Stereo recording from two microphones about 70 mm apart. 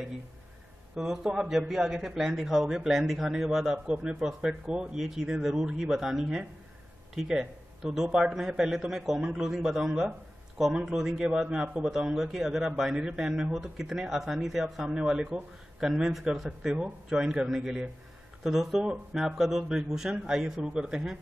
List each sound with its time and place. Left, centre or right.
0.9 s a man's voice: centre
15.8 s a man's voice: centre
20.6 s a man's voice: centre